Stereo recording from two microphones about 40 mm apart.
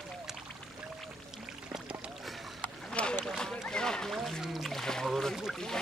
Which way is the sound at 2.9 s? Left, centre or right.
Left.